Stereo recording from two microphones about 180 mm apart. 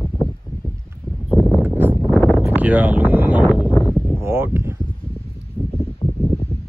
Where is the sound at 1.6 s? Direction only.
10° right (ahead or behind).